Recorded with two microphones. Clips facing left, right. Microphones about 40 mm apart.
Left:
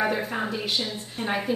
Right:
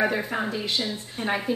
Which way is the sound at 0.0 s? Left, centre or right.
Centre.